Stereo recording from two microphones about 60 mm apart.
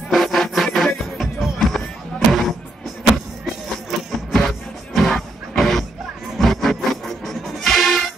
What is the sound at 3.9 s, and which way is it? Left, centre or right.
Music, centre.